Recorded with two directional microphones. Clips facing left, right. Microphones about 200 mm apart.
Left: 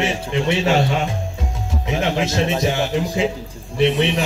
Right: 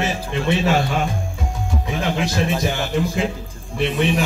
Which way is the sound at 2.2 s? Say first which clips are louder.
Left 1 dB; 20° left (ahead or behind).